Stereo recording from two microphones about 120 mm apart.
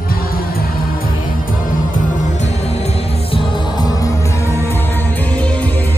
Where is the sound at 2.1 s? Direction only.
90° left; by 3.4 s 60° left (ahead or behind).